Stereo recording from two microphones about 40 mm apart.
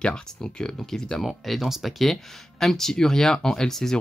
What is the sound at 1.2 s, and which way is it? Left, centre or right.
Speech, centre.